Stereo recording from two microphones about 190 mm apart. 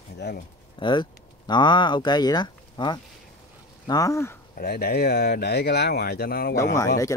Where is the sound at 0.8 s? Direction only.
25° left (ahead or behind).